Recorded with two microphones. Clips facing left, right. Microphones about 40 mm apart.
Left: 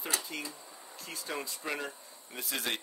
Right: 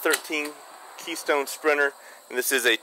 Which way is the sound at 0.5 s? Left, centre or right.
Right.